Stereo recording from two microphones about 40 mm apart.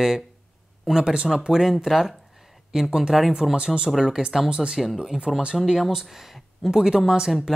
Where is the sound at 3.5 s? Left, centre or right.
Right.